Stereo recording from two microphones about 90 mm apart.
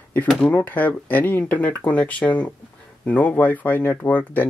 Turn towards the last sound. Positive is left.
turn(degrees=20)  # may be behind; listen again after turning